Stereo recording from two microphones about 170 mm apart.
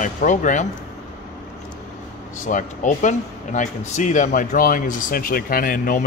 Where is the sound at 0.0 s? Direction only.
45° left (ahead or behind).